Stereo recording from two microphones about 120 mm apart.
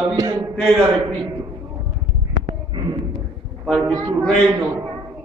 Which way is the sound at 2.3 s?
35° right (ahead or behind).